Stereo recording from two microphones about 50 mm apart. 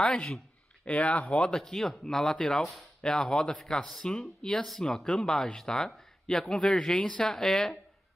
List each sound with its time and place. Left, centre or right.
0.0 s speech: centre
0.8 s speech: left
1.5 s speech: centre